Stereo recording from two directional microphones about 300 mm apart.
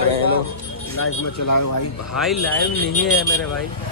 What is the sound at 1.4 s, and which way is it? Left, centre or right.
Speech, left.